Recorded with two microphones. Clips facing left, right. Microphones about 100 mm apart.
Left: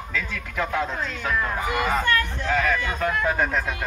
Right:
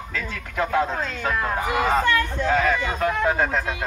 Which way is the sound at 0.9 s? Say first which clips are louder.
Right 1 dB; 45° right (ahead or behind).